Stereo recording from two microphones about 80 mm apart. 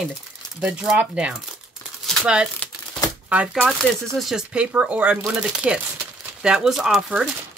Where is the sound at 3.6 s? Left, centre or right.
Centre.